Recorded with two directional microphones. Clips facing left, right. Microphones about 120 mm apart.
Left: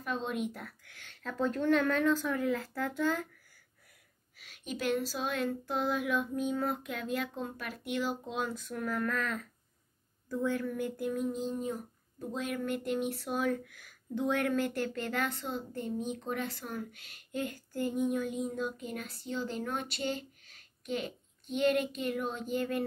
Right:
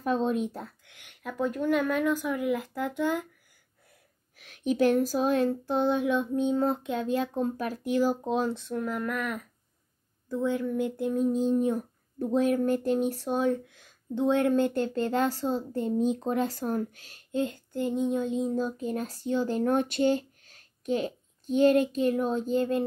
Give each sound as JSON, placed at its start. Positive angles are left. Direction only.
{"t": 0.0, "sound": "speech", "side_deg": -40}
{"t": 4.9, "sound": "child singing", "side_deg": -45}
{"t": 7.3, "sound": "speech", "side_deg": -40}
{"t": 8.3, "sound": "child singing", "side_deg": -30}
{"t": 11.3, "sound": "child singing", "side_deg": -50}
{"t": 11.7, "sound": "a sound", "side_deg": -70}
{"t": 12.4, "sound": "speech", "side_deg": -40}